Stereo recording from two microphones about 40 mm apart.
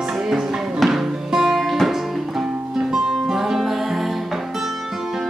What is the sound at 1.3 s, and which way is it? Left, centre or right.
Music, centre.